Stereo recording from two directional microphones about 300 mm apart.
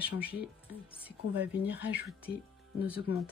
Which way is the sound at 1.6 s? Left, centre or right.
Centre.